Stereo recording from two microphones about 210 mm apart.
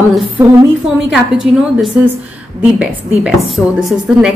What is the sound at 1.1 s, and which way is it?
A woman's voice, centre (ahead or behind).